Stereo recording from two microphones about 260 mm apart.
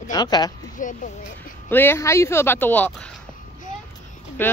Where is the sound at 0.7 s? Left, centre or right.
Left.